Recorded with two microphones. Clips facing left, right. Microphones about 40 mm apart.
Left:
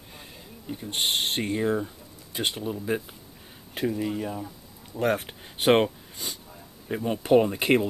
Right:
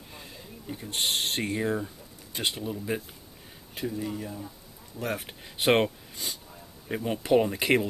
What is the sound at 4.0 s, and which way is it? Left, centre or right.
Speech, left.